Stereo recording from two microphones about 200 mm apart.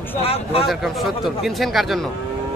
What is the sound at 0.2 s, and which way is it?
Speech, 30° left (ahead or behind).